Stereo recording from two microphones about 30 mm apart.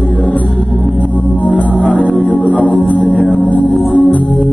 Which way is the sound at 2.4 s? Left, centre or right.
Left.